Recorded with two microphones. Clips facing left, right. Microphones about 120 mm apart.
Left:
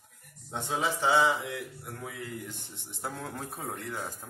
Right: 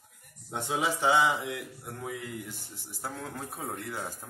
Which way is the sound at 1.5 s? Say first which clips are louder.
Right 1 dB; 25° right (ahead or behind).